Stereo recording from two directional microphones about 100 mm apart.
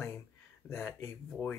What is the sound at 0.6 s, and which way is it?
Speech, 25° left (ahead or behind).